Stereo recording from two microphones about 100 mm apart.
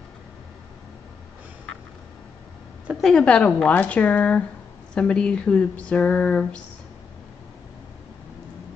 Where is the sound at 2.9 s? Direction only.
5° left (ahead or behind).